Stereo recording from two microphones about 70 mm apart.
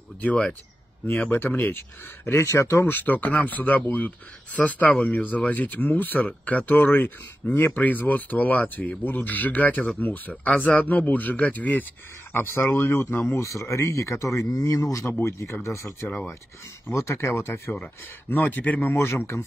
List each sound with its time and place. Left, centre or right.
0.2 s speech: centre; by 2.4 s left
2.4 s speech: left
2.9 s speech: left
12.3 s speech: left
15.1 s speech: left
18.3 s speech: left